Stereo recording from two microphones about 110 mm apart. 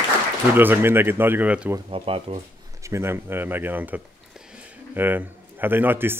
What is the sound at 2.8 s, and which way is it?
Speech, 25° right (ahead or behind).